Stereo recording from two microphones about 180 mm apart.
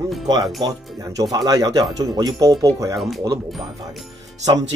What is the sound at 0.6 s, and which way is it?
Speech, 20° right (ahead or behind).